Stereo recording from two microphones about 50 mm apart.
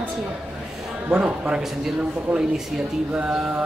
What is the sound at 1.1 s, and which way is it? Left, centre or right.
Speech, centre.